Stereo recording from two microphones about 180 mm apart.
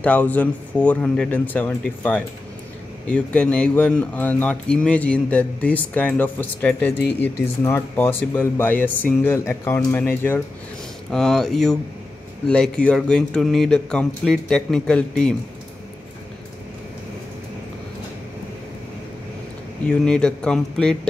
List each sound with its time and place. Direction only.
0.0 s a man's voice: 10° left (ahead or behind)
19.9 s a man's voice: 5° left (ahead or behind)